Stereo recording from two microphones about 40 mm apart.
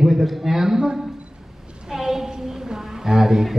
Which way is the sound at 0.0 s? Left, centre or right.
Centre.